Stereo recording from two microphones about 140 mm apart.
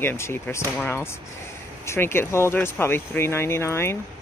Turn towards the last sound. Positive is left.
turn(degrees=20)  # may be behind; listen again after turning